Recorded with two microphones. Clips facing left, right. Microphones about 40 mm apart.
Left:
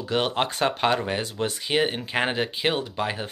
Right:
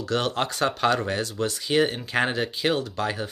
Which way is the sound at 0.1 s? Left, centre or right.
Left.